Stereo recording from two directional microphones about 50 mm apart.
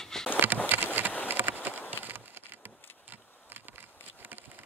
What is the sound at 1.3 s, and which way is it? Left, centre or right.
Insect, right.